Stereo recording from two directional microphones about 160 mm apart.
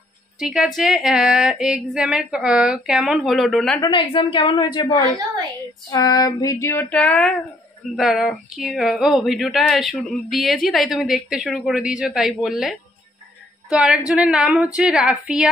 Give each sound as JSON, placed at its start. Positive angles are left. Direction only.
{"t": 0.4, "sound": "speech", "side_deg": 0}
{"t": 3.8, "sound": "a woman's voice", "side_deg": 30}
{"t": 5.9, "sound": "female singing", "side_deg": 25}
{"t": 7.9, "sound": "speech", "side_deg": 0}